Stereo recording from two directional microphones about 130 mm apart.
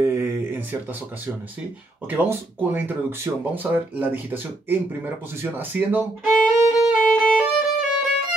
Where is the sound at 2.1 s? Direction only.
15° right (ahead or behind).